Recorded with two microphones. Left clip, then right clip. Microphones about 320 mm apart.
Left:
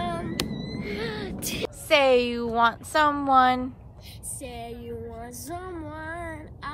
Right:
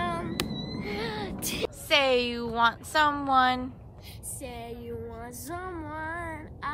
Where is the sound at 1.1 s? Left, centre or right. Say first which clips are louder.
Left 1 dB; right.